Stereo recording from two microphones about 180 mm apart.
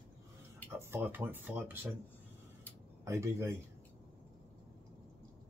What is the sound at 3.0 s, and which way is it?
Speech, 15° right (ahead or behind).